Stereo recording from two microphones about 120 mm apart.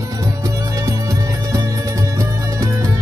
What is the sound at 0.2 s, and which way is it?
Music, 25° right (ahead or behind).